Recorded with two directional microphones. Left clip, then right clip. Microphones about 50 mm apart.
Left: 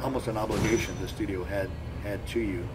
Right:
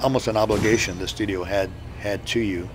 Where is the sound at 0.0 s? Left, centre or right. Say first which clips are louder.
Right 10 dB; right.